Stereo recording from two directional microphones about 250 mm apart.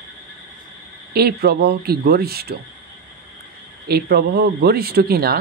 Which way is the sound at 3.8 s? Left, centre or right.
Right.